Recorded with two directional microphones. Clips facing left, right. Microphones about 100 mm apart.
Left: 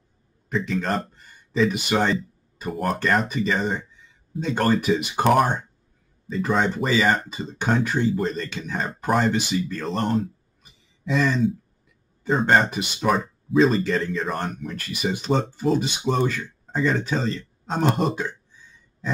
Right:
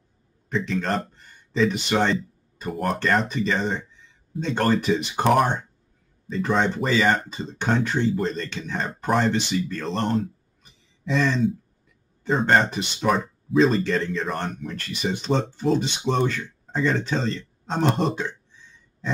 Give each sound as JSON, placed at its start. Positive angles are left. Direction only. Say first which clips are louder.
{"t": 0.5, "sound": "speech", "louder": "even", "side_deg": 5}